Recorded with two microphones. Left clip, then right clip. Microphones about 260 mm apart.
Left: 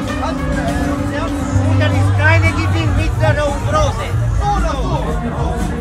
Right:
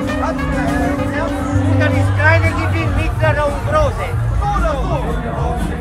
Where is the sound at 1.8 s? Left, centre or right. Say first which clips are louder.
Right 1 dB; centre.